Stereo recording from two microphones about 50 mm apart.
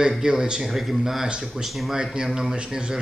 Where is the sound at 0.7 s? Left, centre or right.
Centre.